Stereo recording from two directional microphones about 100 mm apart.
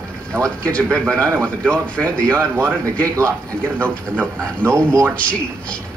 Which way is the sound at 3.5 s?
10° left (ahead or behind).